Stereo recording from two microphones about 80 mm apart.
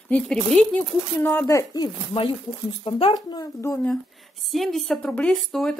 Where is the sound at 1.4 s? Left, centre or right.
Left.